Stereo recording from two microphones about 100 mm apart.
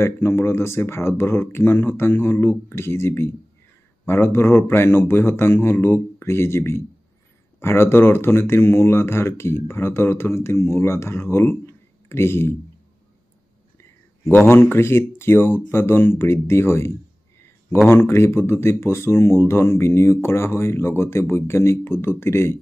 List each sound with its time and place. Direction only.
0.0 s speech: 25° left (ahead or behind)
14.5 s speech: 25° left (ahead or behind)